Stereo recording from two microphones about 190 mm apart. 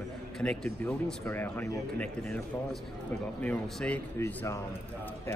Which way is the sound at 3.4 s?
5° left (ahead or behind).